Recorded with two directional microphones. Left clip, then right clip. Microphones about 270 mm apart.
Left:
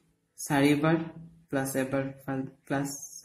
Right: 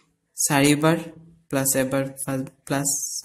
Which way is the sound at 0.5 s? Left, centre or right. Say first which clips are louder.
Right 6 dB; right.